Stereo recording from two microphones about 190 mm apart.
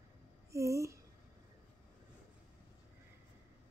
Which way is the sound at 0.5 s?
15° right (ahead or behind).